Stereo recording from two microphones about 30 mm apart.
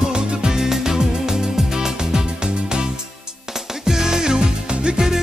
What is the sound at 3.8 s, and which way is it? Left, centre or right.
Music, centre.